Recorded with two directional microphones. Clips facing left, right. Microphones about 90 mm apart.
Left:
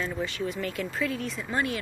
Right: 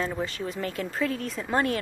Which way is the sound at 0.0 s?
35° right (ahead or behind).